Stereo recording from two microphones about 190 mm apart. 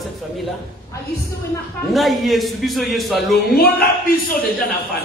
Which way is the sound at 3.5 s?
55° left (ahead or behind).